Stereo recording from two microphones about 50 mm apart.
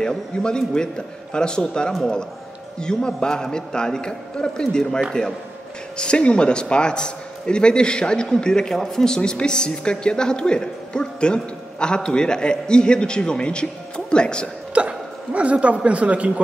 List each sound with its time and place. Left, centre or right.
0.0 s speech: centre
14.7 s a woman's voice: right